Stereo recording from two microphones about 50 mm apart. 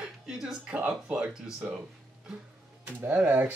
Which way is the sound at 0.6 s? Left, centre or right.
Right.